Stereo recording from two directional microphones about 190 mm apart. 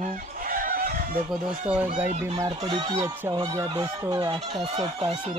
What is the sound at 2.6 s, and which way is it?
Speech, 25° right (ahead or behind).